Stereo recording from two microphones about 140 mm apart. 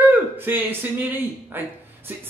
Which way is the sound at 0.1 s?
15° right (ahead or behind).